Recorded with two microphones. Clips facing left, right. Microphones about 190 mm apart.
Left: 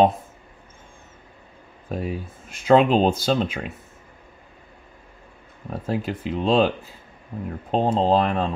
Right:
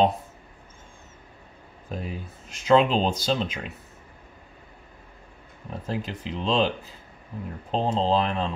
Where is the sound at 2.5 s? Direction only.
50° left (ahead or behind).